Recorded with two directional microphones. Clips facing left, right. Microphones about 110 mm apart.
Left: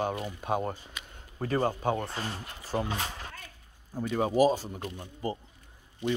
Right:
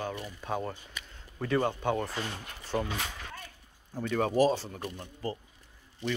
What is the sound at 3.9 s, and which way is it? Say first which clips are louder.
Speech: left 1 dB; 10° left (ahead or behind).